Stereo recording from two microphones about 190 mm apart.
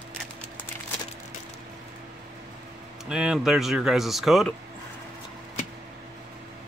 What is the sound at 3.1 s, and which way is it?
Speech, 5° right (ahead or behind).